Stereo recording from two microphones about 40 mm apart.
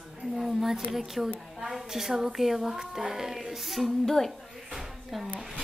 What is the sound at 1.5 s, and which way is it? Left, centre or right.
A woman's voice, centre.